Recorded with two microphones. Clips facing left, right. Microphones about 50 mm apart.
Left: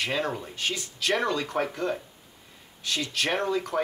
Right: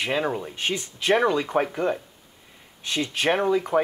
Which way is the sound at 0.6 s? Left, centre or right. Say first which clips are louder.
Right 3 dB; right.